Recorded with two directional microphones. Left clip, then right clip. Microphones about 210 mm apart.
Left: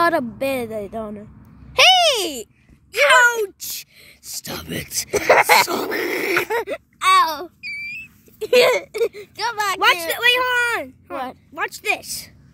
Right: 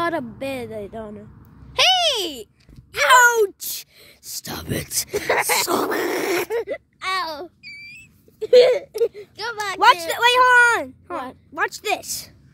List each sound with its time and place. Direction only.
0.0 s speech: 35° left (ahead or behind)
1.7 s a sound: 30° left (ahead or behind)
3.0 s speech: 10° right (ahead or behind)
5.1 s speech: 35° left (ahead or behind)
5.7 s speech: 10° right (ahead or behind)
6.5 s speech: 55° left (ahead or behind)
7.6 s a sound: centre (ahead or behind)
8.4 s speech: 55° left (ahead or behind)
10.1 s speech: 10° right (ahead or behind)